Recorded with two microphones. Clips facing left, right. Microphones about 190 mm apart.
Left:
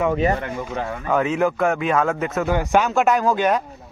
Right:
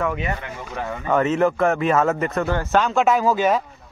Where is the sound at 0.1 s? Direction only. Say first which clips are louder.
Left 7 dB; 35° left (ahead or behind).